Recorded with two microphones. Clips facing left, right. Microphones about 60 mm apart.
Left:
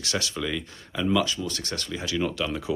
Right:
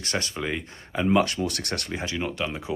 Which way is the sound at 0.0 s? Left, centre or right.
Right.